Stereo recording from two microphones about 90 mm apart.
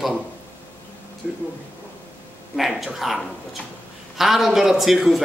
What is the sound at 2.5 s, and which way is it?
A man's voice, centre (ahead or behind).